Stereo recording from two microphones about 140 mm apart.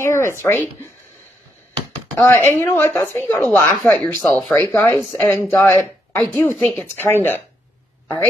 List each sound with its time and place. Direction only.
0.0 s speech: 20° left (ahead or behind)
2.1 s a woman's voice: 15° left (ahead or behind)
3.7 s a woman's voice: 5° left (ahead or behind)